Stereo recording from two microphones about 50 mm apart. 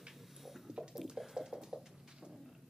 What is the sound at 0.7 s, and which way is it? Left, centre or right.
Music, centre.